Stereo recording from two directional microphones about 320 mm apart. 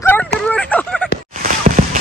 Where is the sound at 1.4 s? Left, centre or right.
Right.